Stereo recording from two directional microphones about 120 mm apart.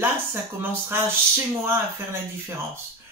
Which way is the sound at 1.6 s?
20° right (ahead or behind).